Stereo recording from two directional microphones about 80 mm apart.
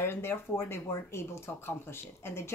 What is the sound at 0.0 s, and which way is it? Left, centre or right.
A woman's voice, left.